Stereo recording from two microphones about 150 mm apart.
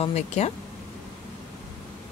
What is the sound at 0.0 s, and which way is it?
Speech, 45° left (ahead or behind).